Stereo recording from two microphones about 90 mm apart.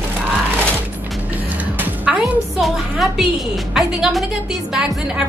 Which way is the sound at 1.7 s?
20° right (ahead or behind).